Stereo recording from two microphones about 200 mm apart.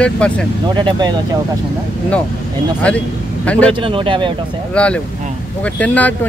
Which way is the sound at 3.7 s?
25° right (ahead or behind).